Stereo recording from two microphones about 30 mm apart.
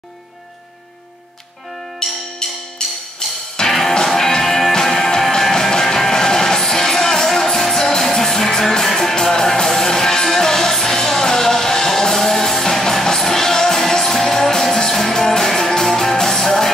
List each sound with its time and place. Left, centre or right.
2.0 s music: centre
3.6 s music: centre